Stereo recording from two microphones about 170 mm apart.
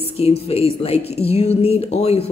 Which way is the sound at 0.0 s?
35° left (ahead or behind).